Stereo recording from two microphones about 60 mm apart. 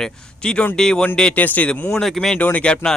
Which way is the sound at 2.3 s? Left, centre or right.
Left.